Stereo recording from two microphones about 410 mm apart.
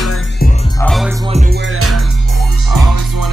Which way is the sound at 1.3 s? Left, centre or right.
Centre.